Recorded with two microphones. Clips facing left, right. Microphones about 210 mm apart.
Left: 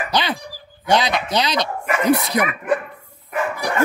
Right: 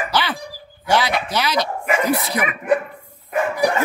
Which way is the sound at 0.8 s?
20° left (ahead or behind).